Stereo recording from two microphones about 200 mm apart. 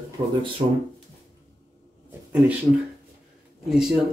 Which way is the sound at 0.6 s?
30° right (ahead or behind).